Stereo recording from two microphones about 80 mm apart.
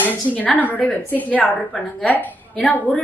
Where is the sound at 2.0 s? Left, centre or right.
Left.